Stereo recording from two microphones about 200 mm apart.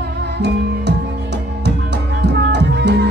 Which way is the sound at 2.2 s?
55° right (ahead or behind).